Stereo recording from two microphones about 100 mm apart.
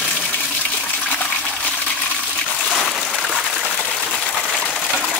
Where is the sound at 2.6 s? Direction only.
Centre (ahead or behind).